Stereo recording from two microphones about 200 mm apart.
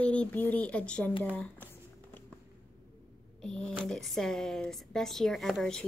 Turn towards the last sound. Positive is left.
turn(degrees=5)  # may be behind; listen again after turning